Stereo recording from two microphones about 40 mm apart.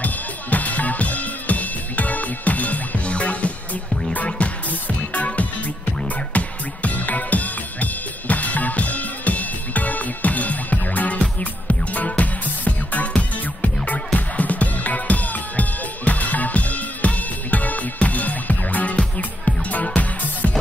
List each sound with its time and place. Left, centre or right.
0.0 s drum kit: left
4.6 s music: left